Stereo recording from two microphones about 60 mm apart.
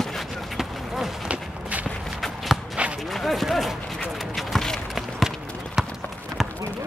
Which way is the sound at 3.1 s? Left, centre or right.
Centre.